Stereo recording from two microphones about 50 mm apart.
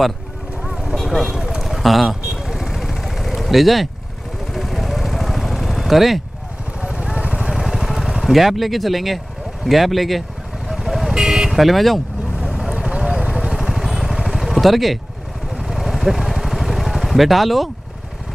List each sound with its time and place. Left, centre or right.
0.7 s vehicle: centre
0.9 s vehicle: centre
1.3 s vehicle: centre
6.8 s vehicle: centre
7.5 s vehicle: centre
9.7 s speech: centre
10.7 s vehicle: centre